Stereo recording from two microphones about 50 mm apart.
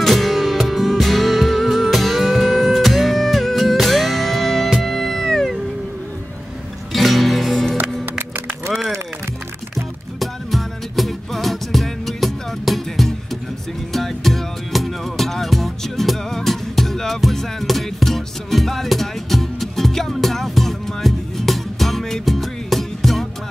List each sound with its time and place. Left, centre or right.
0.0 s music: centre
6.9 s music: centre
8.0 s music: right
8.6 s a sound: centre
9.8 s music: centre